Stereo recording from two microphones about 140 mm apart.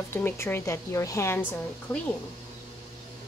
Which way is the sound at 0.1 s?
15° left (ahead or behind).